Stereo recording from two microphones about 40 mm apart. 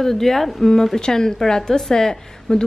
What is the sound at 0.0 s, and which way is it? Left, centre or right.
A woman's voice, centre.